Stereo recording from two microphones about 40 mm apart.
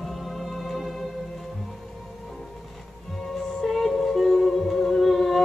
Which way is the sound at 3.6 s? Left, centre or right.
Centre.